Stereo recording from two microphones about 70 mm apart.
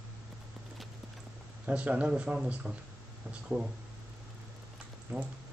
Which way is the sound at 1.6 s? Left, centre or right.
Centre.